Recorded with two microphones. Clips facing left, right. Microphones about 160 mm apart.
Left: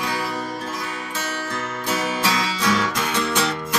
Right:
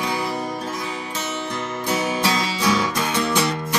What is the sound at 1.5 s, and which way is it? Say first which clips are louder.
Music: right 2 dB; 15° right (ahead or behind).